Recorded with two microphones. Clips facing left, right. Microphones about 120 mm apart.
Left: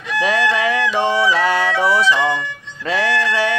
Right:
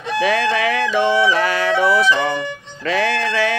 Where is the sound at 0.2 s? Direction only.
25° left (ahead or behind).